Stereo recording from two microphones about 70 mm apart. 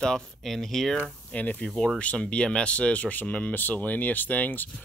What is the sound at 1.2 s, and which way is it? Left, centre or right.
Speech, left.